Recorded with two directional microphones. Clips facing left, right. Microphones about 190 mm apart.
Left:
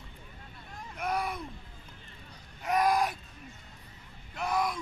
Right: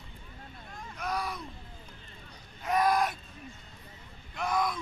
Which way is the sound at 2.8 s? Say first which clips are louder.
Even; 10° left (ahead or behind).